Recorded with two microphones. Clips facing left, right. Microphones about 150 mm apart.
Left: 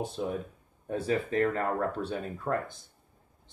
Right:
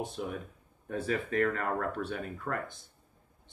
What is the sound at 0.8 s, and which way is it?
Speech, 30° left (ahead or behind).